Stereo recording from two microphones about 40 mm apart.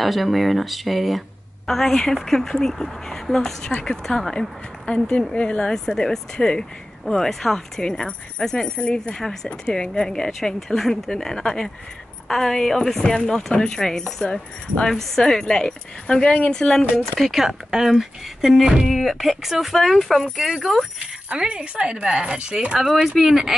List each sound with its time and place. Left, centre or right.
0.0 s speech: centre
1.7 s speech: centre; by 5.7 s left
5.7 s speech: centre
9.1 s speech: centre
17.2 s speech: centre
20.2 s speech: centre
21.0 s speech: right
22.8 s speech: centre